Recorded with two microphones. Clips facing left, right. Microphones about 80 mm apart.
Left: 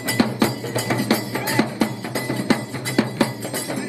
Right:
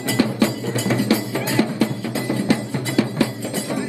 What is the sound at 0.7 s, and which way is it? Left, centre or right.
Music, left.